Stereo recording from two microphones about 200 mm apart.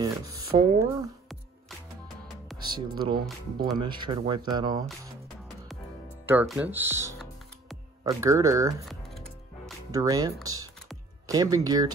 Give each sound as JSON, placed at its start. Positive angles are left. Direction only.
{"t": 0.0, "sound": "a sound", "side_deg": -20}
{"t": 2.5, "sound": "speech", "side_deg": -20}
{"t": 6.4, "sound": "speech", "side_deg": -5}
{"t": 8.8, "sound": "music", "side_deg": 0}
{"t": 9.8, "sound": "speech", "side_deg": -20}